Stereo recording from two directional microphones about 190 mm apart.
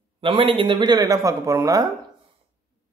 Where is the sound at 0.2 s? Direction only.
25° right (ahead or behind).